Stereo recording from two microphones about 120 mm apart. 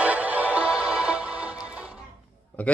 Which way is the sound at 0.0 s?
10° right (ahead or behind).